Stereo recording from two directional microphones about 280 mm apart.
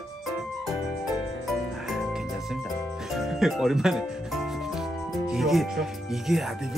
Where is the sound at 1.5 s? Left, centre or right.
Centre.